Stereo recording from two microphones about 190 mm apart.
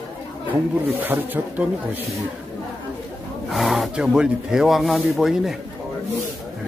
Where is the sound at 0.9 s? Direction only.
10° right (ahead or behind).